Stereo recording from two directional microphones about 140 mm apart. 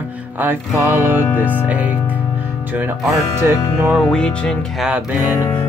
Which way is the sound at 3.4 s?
15° right (ahead or behind).